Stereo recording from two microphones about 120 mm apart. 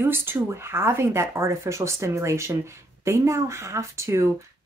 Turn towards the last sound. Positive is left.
turn(degrees=-25)  # may be behind; listen again after turning